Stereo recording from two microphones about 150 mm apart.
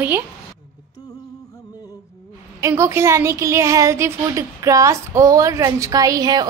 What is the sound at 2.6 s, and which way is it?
A woman's voice, 20° right (ahead or behind).